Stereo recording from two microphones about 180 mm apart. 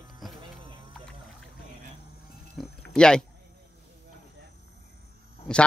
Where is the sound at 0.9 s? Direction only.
5° left (ahead or behind).